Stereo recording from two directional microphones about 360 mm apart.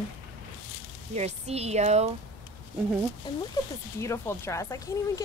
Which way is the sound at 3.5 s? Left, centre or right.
Centre.